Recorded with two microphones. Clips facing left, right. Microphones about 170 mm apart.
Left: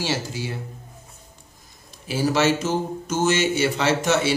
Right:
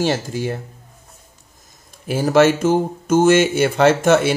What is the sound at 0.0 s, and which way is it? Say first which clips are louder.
Speech: right 7 dB; 50° right (ahead or behind).